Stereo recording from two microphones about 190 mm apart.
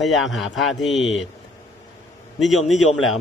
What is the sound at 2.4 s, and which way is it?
Speech, centre (ahead or behind).